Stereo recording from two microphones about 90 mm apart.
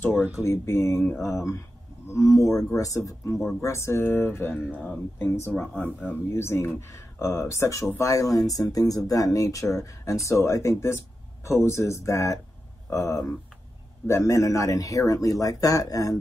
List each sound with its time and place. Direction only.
0.1 s speech: 15° right (ahead or behind)
0.4 s speech: 30° left (ahead or behind)